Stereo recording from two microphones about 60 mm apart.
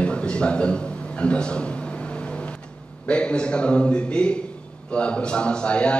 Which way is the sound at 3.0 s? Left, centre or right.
Centre.